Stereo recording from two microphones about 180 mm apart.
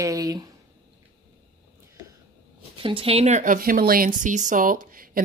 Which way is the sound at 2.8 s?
30° right (ahead or behind).